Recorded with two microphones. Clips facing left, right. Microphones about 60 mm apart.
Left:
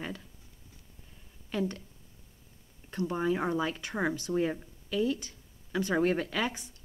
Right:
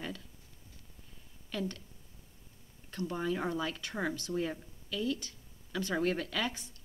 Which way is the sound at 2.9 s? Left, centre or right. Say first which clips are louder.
Left 5 dB; left.